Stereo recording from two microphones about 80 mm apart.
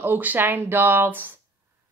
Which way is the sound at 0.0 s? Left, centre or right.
Right.